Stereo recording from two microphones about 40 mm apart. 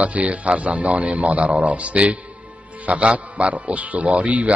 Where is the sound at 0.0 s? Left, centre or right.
Right.